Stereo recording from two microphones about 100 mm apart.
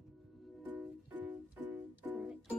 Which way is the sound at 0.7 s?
15° right (ahead or behind).